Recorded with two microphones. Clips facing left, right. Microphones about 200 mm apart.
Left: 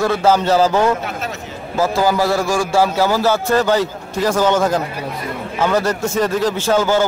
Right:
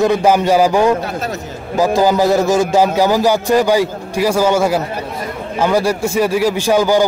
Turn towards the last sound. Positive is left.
turn(degrees=-15)  # may be behind; listen again after turning